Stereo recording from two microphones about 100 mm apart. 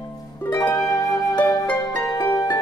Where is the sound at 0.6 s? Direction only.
35° left (ahead or behind).